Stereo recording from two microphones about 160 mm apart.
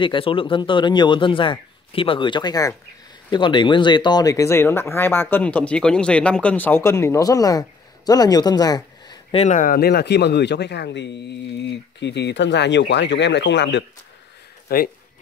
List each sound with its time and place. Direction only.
0.0 s speech: 30° left (ahead or behind)
9.3 s speech: 40° left (ahead or behind)
9.6 s speech: 70° left (ahead or behind); by 13.8 s 90° left
14.7 s speech: 70° left (ahead or behind)